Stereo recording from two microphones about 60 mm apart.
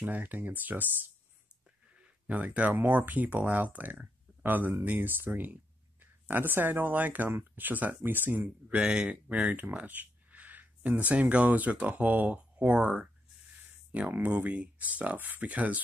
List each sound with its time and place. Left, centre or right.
0.0 s speech: right
2.0 s a sound: right
2.7 s speech: right
7.2 s speech: right
7.6 s speech: right
9.5 s a sound: right
11.0 s speech: right
14.3 s speech: right